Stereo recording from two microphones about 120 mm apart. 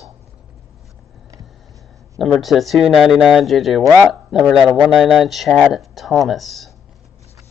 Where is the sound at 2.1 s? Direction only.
Centre (ahead or behind).